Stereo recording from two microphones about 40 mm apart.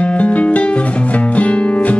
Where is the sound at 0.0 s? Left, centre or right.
Left.